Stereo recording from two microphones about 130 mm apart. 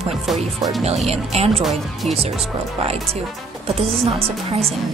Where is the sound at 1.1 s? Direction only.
50° right (ahead or behind).